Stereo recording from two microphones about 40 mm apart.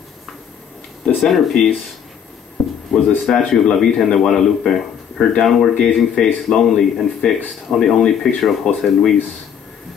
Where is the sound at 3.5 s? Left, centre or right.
Centre.